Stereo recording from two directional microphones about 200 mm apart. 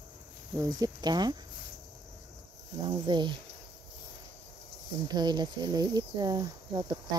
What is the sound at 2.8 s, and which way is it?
Speech, 20° right (ahead or behind).